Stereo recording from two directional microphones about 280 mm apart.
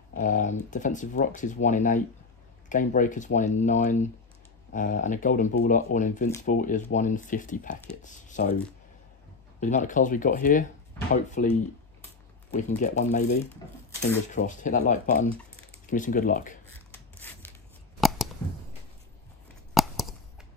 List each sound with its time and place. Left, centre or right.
0.1 s speech: left
9.6 s speech: left
12.5 s speech: left
17.2 s a sound: centre
18.0 s scissors: centre
19.7 s a sound: centre